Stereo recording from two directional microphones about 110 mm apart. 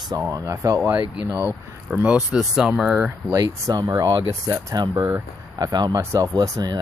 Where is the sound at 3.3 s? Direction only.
30° right (ahead or behind).